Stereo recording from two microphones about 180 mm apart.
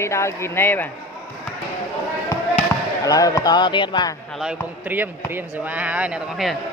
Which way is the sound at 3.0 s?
20° left (ahead or behind).